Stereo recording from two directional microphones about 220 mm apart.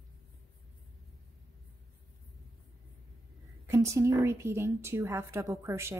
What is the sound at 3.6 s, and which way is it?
A woman's voice, 15° right (ahead or behind).